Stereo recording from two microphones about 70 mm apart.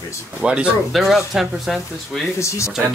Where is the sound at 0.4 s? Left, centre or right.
Centre.